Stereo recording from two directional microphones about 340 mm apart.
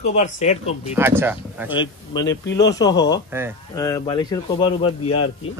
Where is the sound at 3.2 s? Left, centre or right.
Centre.